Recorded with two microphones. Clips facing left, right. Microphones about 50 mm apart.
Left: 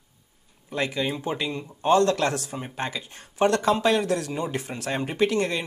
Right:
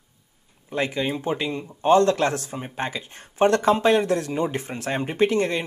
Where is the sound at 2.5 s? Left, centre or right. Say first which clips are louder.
Right 2 dB; centre.